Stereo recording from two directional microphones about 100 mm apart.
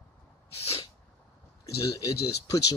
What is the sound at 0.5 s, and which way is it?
Sneeze, 80° left.